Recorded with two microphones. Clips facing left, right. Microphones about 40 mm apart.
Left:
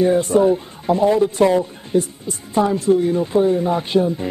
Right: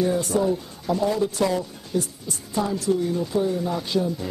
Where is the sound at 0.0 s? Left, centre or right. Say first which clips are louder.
Left 7 dB; left.